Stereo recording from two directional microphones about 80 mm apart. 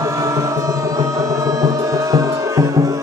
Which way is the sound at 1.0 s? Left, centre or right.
Right.